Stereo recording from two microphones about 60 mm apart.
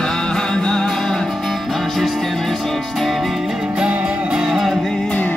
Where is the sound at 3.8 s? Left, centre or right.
Centre.